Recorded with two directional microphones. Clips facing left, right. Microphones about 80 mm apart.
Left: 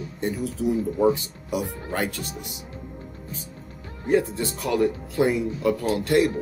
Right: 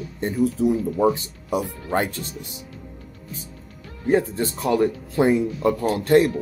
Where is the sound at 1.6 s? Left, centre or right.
Left.